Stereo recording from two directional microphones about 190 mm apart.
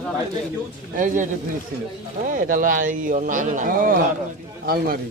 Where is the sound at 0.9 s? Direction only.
40° right (ahead or behind).